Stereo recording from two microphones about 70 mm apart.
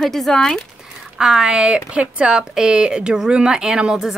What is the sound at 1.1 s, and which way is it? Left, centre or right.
Speech, centre.